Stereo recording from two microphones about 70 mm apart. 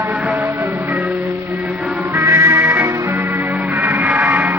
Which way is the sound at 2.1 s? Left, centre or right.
Right.